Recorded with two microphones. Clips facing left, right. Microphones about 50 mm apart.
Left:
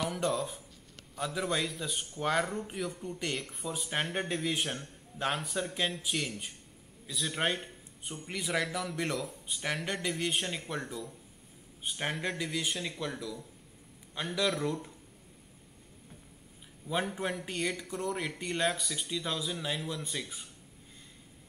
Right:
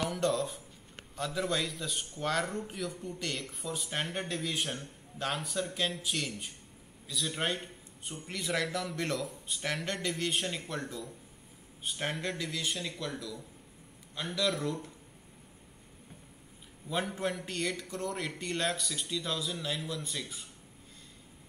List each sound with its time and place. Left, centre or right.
0.1 s a man's voice: centre
14.1 s a man's voice: centre
16.9 s a man's voice: centre